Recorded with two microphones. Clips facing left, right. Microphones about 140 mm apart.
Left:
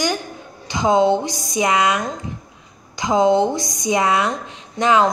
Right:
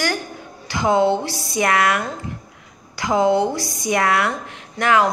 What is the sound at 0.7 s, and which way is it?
A woman's voice, 20° left (ahead or behind).